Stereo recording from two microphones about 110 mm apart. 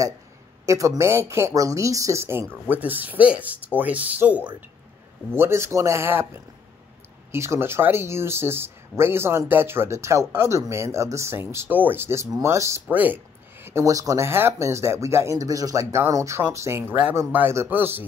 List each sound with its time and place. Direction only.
0.7 s speech: 30° right (ahead or behind)
12.9 s speech: 15° right (ahead or behind)